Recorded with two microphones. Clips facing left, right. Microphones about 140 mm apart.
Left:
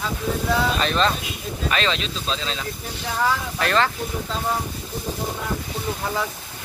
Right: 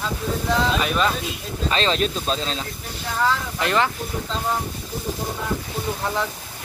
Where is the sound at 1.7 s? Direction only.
35° right (ahead or behind).